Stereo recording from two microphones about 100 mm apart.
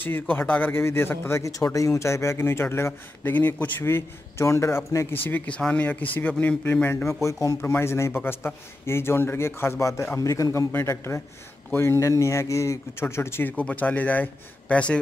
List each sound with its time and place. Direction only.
0.0 s a man's voice: 20° left (ahead or behind)